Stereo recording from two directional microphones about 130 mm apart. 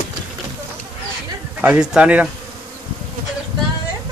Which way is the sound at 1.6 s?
10° right (ahead or behind).